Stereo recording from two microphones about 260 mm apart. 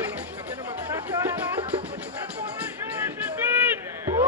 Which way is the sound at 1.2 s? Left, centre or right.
Centre.